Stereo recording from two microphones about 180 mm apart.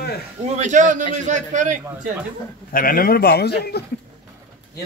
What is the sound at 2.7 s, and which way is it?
A man's voice, 50° left (ahead or behind).